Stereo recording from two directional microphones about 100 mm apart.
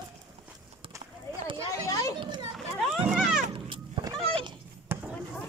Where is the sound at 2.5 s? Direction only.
Centre (ahead or behind).